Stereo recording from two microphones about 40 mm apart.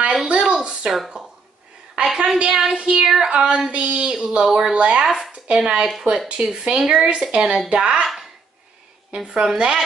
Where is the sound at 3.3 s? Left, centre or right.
Right.